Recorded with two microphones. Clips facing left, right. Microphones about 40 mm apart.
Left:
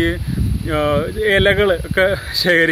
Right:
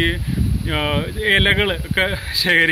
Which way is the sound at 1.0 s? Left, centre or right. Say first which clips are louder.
Left 3 dB; right.